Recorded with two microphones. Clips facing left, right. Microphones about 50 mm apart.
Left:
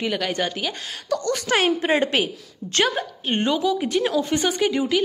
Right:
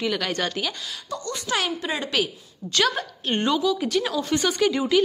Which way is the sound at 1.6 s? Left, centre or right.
Left.